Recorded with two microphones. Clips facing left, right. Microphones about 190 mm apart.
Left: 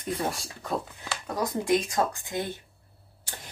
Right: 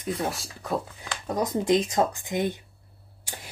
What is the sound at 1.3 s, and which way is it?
Speech, 20° right (ahead or behind).